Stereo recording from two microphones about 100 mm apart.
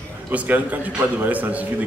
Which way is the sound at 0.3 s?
15° right (ahead or behind).